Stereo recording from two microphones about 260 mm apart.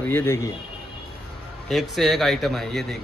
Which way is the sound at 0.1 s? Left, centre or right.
Centre.